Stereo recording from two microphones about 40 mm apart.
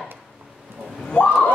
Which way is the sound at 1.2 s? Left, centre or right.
Left.